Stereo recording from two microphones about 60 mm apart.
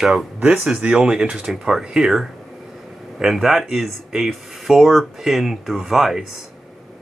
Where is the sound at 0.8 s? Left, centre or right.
Right; by 6.2 s centre.